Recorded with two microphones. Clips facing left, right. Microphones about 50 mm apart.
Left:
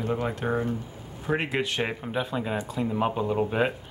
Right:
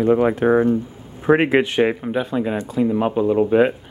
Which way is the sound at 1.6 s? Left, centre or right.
Right.